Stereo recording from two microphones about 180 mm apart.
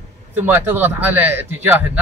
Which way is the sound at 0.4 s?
10° right (ahead or behind).